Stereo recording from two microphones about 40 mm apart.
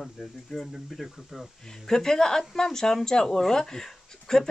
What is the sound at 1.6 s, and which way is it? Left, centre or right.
Speech, centre.